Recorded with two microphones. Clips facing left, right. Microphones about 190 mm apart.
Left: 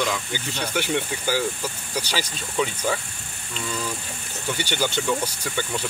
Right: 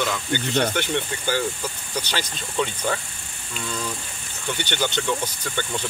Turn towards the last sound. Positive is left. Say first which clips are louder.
# even
turn(degrees=5)  # may be behind; listen again after turning